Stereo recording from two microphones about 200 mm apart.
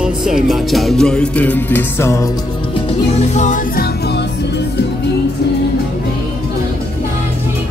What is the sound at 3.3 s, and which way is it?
Music, 40° left (ahead or behind).